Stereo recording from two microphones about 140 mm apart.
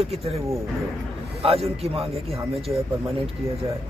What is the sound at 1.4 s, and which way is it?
Speech, 45° right (ahead or behind).